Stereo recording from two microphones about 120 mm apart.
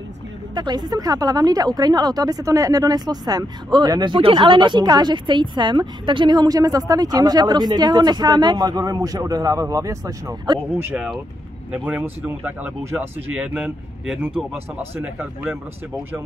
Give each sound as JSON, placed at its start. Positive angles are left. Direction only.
{"t": 0.6, "sound": "a woman's voice", "side_deg": -35}
{"t": 11.7, "sound": "speech", "side_deg": -10}